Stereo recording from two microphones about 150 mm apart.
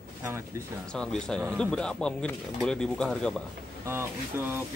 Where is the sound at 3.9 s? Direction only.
15° right (ahead or behind).